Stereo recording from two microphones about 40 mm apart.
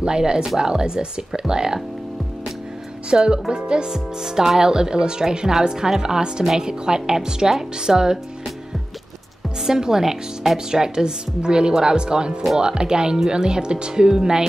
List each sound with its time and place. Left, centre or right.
0.0 s speech: right
3.2 s speech: right
9.6 s speech: centre